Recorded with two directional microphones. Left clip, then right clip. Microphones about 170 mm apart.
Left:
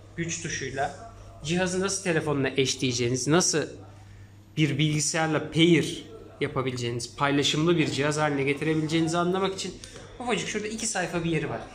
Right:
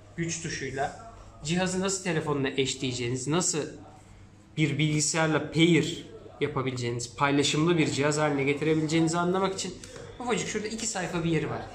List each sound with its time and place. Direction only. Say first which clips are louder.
0.2 s a man's voice: left 1 dB; 20° left (ahead or behind)